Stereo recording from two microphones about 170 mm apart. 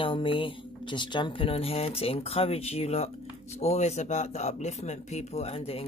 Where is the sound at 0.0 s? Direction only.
30° left (ahead or behind).